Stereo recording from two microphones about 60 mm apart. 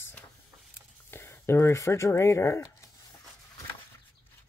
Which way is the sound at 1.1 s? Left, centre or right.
Left.